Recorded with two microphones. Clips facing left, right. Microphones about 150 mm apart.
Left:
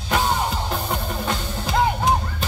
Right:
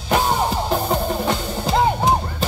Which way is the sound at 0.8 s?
30° right (ahead or behind).